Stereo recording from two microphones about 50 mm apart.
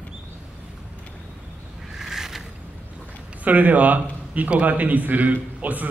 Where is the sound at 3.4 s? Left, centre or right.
Right.